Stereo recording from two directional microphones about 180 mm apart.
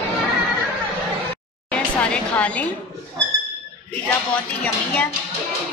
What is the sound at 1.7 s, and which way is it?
Speech, 5° left (ahead or behind).